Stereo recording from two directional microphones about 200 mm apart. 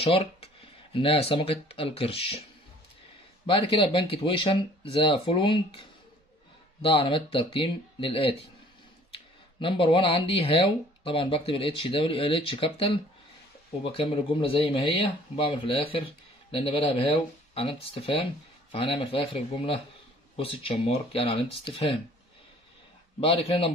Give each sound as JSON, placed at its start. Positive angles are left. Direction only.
{"t": 0.1, "sound": "speech", "side_deg": 30}
{"t": 3.4, "sound": "speech", "side_deg": 25}
{"t": 23.2, "sound": "speech", "side_deg": 30}